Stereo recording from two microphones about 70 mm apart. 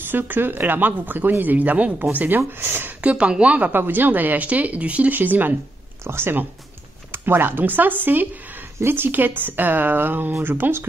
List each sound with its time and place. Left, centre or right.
0.0 s speech: right
3.0 s a woman's voice: centre
3.7 s speech: right